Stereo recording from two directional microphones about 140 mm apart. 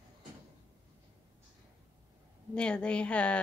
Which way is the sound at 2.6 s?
5° left (ahead or behind).